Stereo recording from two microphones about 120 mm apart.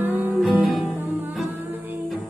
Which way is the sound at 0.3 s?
5° right (ahead or behind).